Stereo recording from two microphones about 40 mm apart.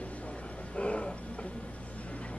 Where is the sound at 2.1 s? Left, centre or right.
Left.